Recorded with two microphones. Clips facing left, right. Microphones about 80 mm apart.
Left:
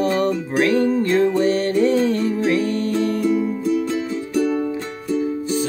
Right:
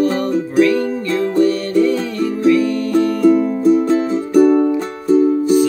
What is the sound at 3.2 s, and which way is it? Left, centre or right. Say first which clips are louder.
Music: right 8 dB; right.